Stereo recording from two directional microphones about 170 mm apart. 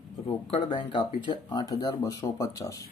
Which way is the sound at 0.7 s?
25° left (ahead or behind).